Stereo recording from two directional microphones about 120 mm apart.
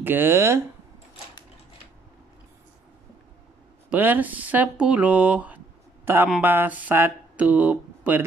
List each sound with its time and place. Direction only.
0.0 s speech: 15° right (ahead or behind)
3.9 s speech: 15° right (ahead or behind)